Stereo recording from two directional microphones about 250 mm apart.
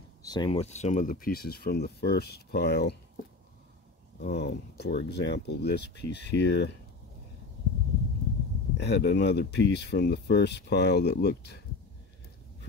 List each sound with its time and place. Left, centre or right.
0.2 s speech: centre; by 3.0 s left
4.2 s speech: left
8.7 s speech: left